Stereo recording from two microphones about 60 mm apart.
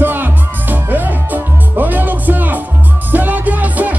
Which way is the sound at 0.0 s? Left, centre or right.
Right.